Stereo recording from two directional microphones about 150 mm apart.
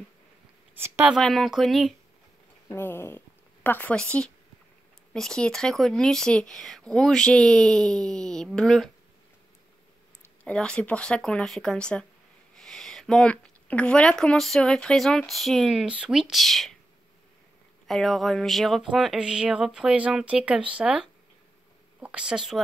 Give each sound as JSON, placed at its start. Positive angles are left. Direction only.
{"t": 0.7, "sound": "speech", "side_deg": -15}
{"t": 1.1, "sound": "speech", "side_deg": 0}
{"t": 2.7, "sound": "speech", "side_deg": 15}
{"t": 10.2, "sound": "speech", "side_deg": 5}
{"t": 17.8, "sound": "speech", "side_deg": 0}